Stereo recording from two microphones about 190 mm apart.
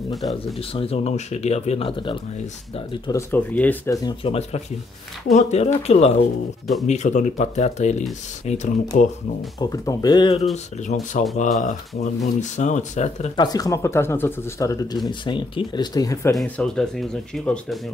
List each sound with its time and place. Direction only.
0.1 s speech: centre (ahead or behind)
0.6 s speech: 30° left (ahead or behind)
2.9 s speech: 15° left (ahead or behind)
4.2 s speech: 30° left (ahead or behind)
9.6 s speech: 20° left (ahead or behind)
10.5 s speech: 35° left (ahead or behind)
13.4 s speech: 20° left (ahead or behind)
16.3 s speech: 5° left (ahead or behind)